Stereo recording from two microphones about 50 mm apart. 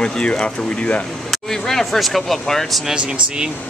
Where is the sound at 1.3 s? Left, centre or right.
Centre.